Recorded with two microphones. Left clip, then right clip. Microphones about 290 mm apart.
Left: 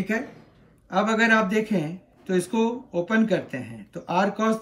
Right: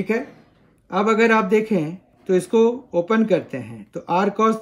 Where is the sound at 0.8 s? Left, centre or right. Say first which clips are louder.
Right 4 dB; centre.